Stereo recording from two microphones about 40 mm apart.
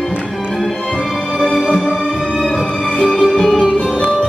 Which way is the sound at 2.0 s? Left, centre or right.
Centre.